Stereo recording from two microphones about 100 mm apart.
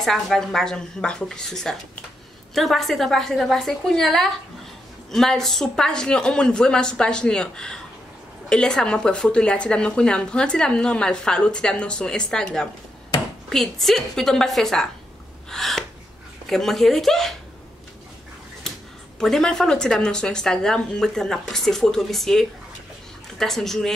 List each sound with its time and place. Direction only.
0.0 s a woman's voice: 5° left (ahead or behind)
15.5 s gasp: 5° left (ahead or behind)
16.4 s a woman's voice: centre (ahead or behind)
19.1 s a woman's voice: 5° left (ahead or behind)